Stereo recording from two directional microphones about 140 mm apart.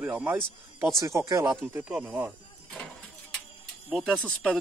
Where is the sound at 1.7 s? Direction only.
10° right (ahead or behind).